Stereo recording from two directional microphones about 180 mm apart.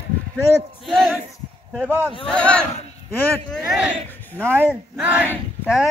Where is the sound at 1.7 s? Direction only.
5° left (ahead or behind).